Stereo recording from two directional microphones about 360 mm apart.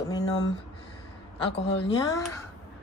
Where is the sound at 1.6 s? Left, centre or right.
Left.